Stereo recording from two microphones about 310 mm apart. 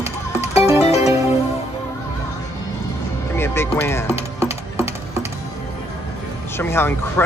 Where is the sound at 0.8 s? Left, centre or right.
Centre.